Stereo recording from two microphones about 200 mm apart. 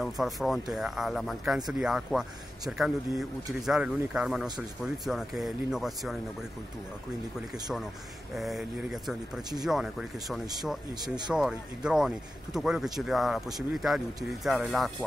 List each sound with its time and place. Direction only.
0.0 s speech: centre (ahead or behind)
3.6 s speech: 5° right (ahead or behind)
8.4 s speech: centre (ahead or behind)
11.0 s speech: 20° right (ahead or behind)
11.3 s speech: 5° right (ahead or behind)